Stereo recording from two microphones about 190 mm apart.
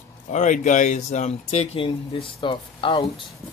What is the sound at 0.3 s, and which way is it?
Speech, 40° left (ahead or behind).